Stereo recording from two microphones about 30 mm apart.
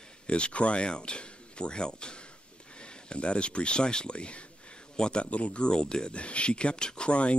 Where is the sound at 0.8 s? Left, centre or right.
Left.